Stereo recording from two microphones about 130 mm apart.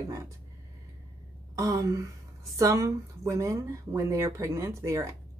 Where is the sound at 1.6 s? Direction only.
25° right (ahead or behind).